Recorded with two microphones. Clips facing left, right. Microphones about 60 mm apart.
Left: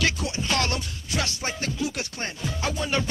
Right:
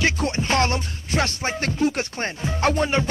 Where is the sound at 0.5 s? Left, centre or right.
Right.